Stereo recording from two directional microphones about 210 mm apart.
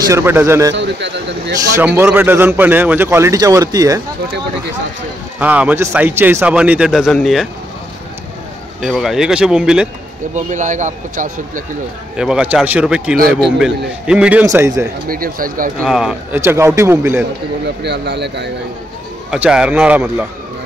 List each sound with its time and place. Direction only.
0.0 s a man's voice: 15° right (ahead or behind)
0.7 s speech: 55° right (ahead or behind)
2.0 s a man's voice: 10° right (ahead or behind)
5.4 s a man's voice: 5° right (ahead or behind)
8.8 s speech: centre (ahead or behind)
10.3 s speech: 35° right (ahead or behind)
12.2 s a man's voice: 5° right (ahead or behind)
15.0 s speech: 45° right (ahead or behind)
15.8 s a man's voice: centre (ahead or behind)
17.8 s speech: 55° right (ahead or behind)
19.3 s speech: 5° right (ahead or behind)